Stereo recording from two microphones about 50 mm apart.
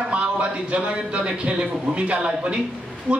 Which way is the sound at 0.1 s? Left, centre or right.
Right.